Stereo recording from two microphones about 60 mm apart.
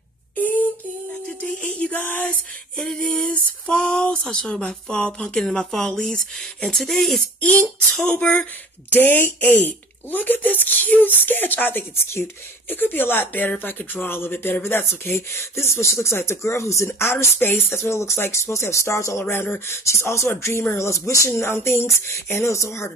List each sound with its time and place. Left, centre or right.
1.4 s music: left
2.7 s a sound: centre
8.1 s speech: left
8.9 s speech: left
17.1 s speech: left
21.3 s speech: left